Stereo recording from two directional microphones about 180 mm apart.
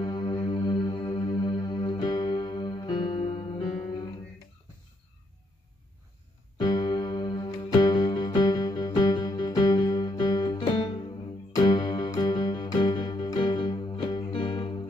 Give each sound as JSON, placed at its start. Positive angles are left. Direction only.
{"t": 0.0, "sound": "music", "side_deg": 25}
{"t": 6.6, "sound": "music", "side_deg": 25}